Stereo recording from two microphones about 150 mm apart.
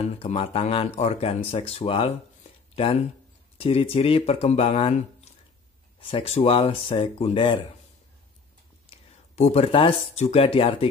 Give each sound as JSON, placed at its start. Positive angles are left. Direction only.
{"t": 0.0, "sound": "speech", "side_deg": 40}
{"t": 9.3, "sound": "speech", "side_deg": 45}